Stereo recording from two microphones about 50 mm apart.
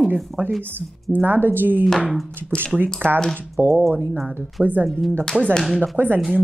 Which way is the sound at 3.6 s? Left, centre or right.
Right.